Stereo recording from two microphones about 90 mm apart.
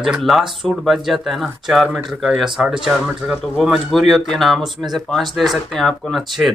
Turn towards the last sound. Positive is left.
turn(degrees=0)  # may be behind; listen again after turning